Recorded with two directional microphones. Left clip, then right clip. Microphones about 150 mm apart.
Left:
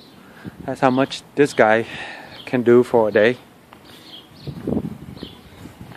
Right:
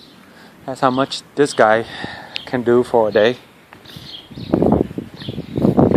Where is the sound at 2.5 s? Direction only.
30° left (ahead or behind).